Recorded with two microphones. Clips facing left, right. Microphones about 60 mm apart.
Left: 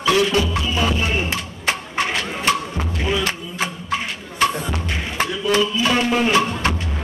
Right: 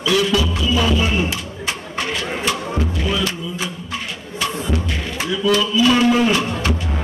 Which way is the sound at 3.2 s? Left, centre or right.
Left.